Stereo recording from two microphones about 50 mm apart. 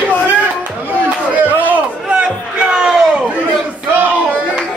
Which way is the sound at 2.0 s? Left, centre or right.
Right.